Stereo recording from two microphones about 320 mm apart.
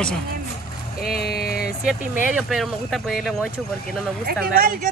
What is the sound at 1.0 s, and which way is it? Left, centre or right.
Speech, left.